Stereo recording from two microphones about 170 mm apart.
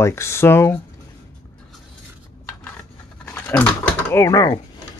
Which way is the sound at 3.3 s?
10° left (ahead or behind).